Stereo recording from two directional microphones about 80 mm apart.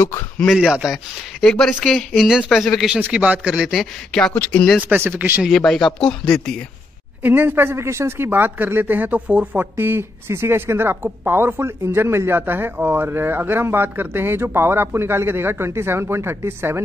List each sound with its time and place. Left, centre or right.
0.5 s speech: centre
1.4 s speech: centre
4.1 s speech: centre
4.8 s speech: right
5.5 s speech: centre
7.2 s speech: right
8.3 s speech: right